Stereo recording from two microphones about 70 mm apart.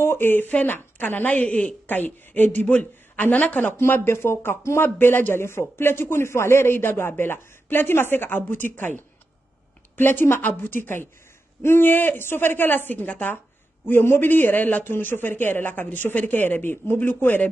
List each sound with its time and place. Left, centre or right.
0.0 s a man's voice: left
3.7 s a man's voice: left